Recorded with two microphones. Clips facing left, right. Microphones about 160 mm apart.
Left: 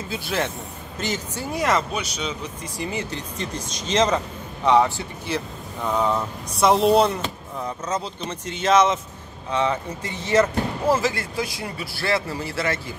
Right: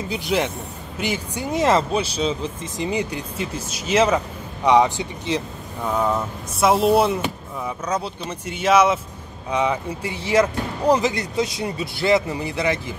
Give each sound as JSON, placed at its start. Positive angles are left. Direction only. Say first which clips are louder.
{"t": 0.1, "sound": "speech", "louder": "right 3 dB", "side_deg": -15}
{"t": 5.9, "sound": "speech", "louder": "right 1 dB", "side_deg": -5}